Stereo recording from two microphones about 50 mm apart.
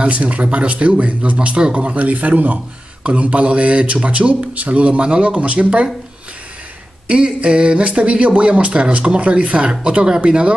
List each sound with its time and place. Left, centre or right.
0.0 s speech: right
7.1 s speech: right